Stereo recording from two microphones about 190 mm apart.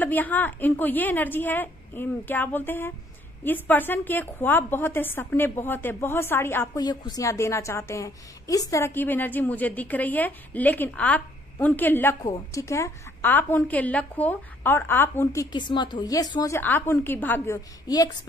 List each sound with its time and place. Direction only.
0.0 s a woman's voice: 10° left (ahead or behind)
15.5 s a woman's voice: 25° left (ahead or behind)